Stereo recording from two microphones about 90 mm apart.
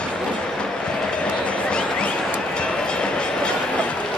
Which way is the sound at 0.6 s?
10° left (ahead or behind).